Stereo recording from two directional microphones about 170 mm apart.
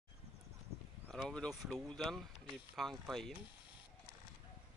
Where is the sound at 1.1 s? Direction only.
5° left (ahead or behind).